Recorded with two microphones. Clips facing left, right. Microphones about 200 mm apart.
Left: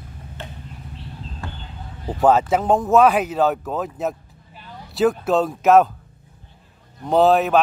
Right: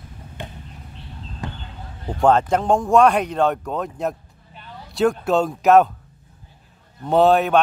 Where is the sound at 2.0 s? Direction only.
5° left (ahead or behind).